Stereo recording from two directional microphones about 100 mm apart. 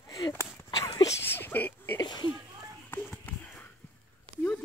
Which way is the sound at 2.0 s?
45° left (ahead or behind).